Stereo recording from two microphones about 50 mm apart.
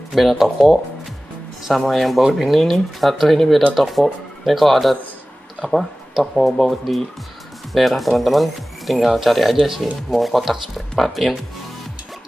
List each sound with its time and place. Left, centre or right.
0.1 s speech: centre